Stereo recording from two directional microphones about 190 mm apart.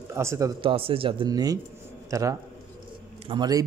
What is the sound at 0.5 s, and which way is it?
A man's voice, 30° right (ahead or behind).